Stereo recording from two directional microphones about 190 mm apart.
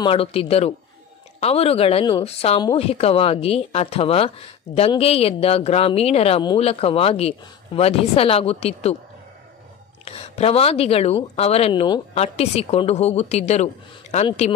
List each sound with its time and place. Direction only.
0.0 s a woman's voice: 30° left (ahead or behind)
10.0 s a woman's voice: 30° left (ahead or behind)